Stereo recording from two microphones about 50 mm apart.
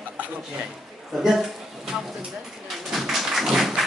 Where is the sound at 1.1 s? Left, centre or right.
Centre.